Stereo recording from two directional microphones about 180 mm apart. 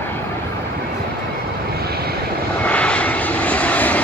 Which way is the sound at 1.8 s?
60° right (ahead or behind).